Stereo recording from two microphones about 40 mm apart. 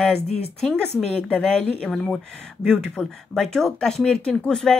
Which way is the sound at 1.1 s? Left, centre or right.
Left.